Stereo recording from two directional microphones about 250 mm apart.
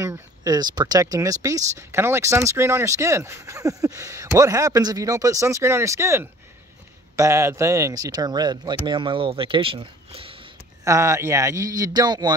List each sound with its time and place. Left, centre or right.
0.0 s speech: centre